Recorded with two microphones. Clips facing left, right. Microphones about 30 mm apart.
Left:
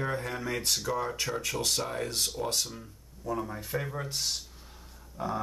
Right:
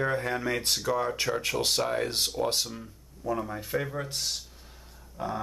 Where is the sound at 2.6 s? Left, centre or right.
Centre.